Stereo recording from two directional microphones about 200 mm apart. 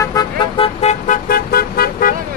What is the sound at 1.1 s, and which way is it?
Vehicle, 50° left (ahead or behind).